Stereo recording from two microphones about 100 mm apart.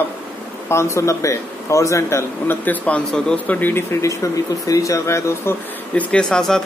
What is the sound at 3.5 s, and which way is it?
A man's voice, 20° left (ahead or behind).